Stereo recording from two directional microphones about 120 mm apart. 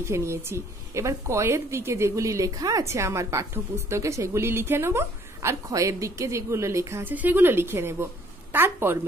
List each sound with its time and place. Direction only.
0.0 s a woman's voice: 25° right (ahead or behind)